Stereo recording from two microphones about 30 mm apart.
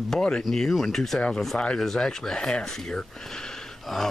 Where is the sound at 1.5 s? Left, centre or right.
Left.